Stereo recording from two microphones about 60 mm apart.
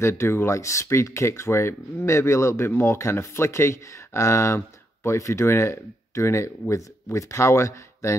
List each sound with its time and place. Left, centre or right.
0.0 s speech: left
0.6 s speech: left